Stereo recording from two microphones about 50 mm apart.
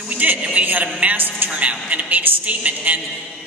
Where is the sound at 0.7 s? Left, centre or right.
Right.